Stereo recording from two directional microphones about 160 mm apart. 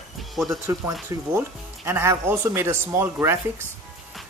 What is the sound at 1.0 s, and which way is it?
Speech, 15° right (ahead or behind).